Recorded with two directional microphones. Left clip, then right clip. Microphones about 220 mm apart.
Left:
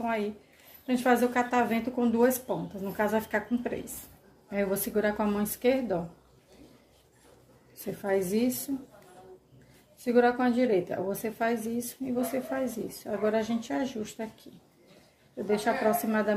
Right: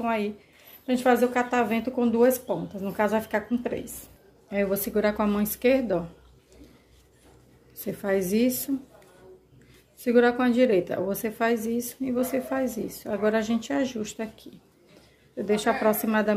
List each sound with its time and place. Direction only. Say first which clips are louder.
0.0 s a woman's voice: right 3 dB; 20° right (ahead or behind)
7.8 s a woman's voice: right 3 dB; 25° right (ahead or behind)
9.9 s a woman's voice: right 3 dB; 20° right (ahead or behind)
15.3 s a woman's voice: right 3 dB; 25° right (ahead or behind)